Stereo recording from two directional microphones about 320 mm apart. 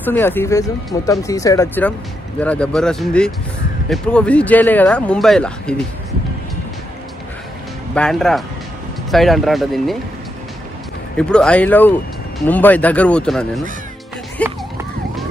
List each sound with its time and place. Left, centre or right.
0.0 s speech: centre
7.9 s speech: centre
11.1 s speech: centre
14.4 s emergency vehicle: centre